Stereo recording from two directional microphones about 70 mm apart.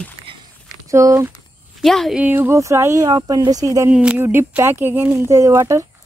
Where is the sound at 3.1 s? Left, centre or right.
Right.